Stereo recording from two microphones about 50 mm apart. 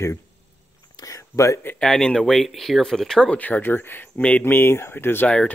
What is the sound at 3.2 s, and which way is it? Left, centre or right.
Speech, left.